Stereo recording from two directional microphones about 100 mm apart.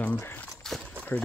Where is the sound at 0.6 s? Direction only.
Centre (ahead or behind).